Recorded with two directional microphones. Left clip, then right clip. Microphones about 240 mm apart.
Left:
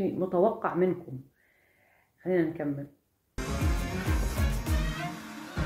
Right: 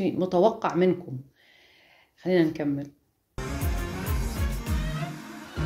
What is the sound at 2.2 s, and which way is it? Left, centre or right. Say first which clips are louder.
Speech: right 4 dB; right.